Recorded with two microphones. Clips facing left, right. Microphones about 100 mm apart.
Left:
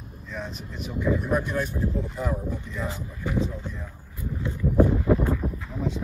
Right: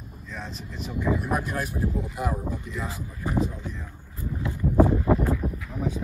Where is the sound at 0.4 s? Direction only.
Centre (ahead or behind).